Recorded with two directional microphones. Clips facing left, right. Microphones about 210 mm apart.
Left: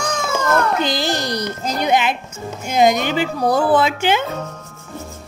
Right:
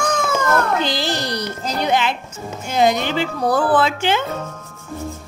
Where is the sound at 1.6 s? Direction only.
15° left (ahead or behind).